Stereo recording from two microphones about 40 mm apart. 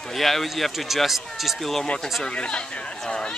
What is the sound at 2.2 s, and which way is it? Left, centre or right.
Speech, left.